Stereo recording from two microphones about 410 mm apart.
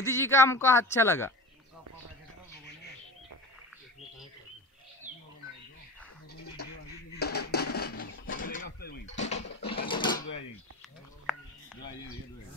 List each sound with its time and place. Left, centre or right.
0.0 s speech: centre
6.3 s bird: left
7.2 s a sound: left
9.6 s mechanisms: centre